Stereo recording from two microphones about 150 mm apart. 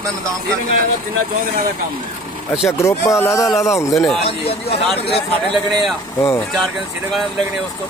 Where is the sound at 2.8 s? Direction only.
20° left (ahead or behind).